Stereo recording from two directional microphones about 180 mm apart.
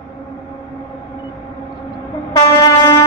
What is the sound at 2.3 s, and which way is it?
Train, 20° left (ahead or behind).